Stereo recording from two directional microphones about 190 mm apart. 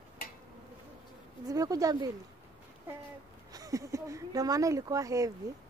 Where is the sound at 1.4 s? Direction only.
20° right (ahead or behind).